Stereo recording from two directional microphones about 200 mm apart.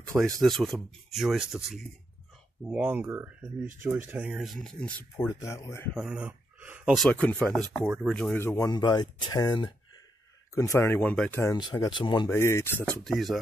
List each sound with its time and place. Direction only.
0.4 s speech: centre (ahead or behind)
5.9 s speech: 5° right (ahead or behind)
11.5 s speech: 20° left (ahead or behind); by 13.4 s centre (ahead or behind)